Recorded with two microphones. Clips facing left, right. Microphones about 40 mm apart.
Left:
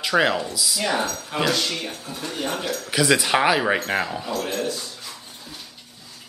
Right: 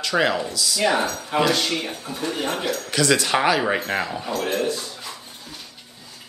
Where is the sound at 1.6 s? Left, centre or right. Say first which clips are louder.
Right 2 dB; centre.